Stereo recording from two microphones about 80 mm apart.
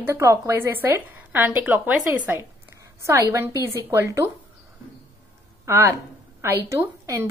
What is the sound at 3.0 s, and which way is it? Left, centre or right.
A woman's voice, right.